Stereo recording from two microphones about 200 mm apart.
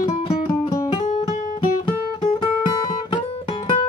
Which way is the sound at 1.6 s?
25° left (ahead or behind).